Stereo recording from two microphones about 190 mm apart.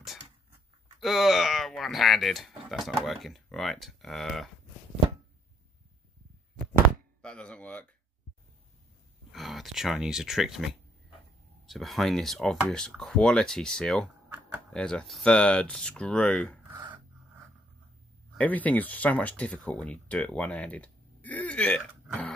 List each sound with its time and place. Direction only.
1.0 s speech: centre (ahead or behind)
7.2 s speech: 5° left (ahead or behind)
9.3 s speech: centre (ahead or behind)
14.0 s a sound: 10° right (ahead or behind)
14.7 s speech: 5° left (ahead or behind)
18.3 s speech: 10° left (ahead or behind)